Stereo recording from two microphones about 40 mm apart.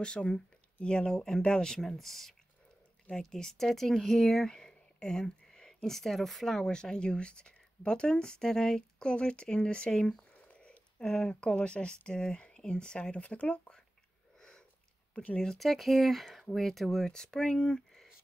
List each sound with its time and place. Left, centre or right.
0.0 s speech: left
10.3 s a sound: left
11.1 s speech: left
13.2 s speech: left
15.3 s speech: centre
15.6 s speech: centre
17.0 s speech: centre
17.6 s speech: left